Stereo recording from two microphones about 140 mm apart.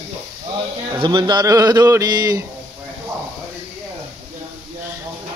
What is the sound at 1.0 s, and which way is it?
Speech, 30° right (ahead or behind).